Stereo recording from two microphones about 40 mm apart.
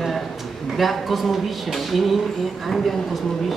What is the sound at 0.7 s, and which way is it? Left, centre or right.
Speech, centre.